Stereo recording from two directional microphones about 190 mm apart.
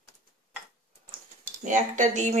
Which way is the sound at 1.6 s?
40° right (ahead or behind).